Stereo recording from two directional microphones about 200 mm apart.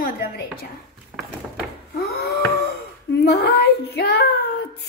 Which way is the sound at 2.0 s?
50° left (ahead or behind).